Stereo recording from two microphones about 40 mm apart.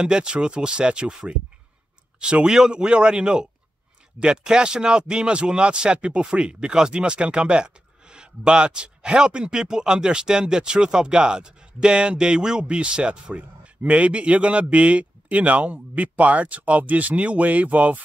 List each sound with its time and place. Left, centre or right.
0.0 s a man's voice: right